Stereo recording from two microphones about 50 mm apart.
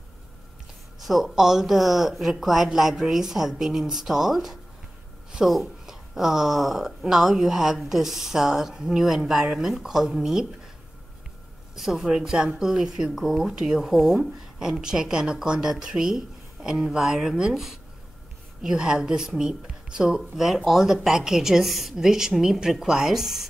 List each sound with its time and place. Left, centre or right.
0.9 s a woman's voice: centre
11.7 s a woman's voice: centre
13.5 s a woman's voice: centre